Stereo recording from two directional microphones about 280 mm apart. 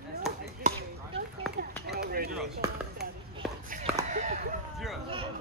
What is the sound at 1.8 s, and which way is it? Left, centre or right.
Speech, right.